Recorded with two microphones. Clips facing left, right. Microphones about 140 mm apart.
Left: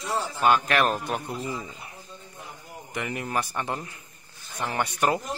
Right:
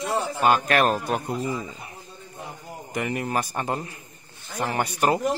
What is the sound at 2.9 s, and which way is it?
Speech, 40° right (ahead or behind).